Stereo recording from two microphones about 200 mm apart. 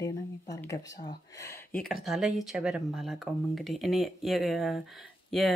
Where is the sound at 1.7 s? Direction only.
Centre (ahead or behind).